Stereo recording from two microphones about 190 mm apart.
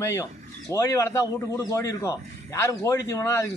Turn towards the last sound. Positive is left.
turn(degrees=15)  # may be behind; listen again after turning